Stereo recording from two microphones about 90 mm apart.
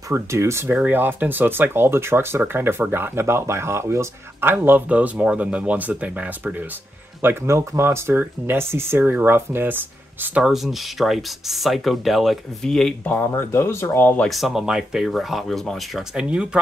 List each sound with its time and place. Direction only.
0.1 s speech: 30° right (ahead or behind)
7.2 s speech: 30° right (ahead or behind)
10.4 s speech: 5° right (ahead or behind)
13.0 s speech: 20° left (ahead or behind)
14.0 s speech: 15° left (ahead or behind)
14.3 s speech: 5° right (ahead or behind)
16.0 s speech: 10° right (ahead or behind)